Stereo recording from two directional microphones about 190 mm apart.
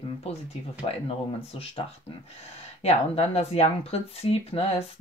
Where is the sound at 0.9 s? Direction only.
30° left (ahead or behind).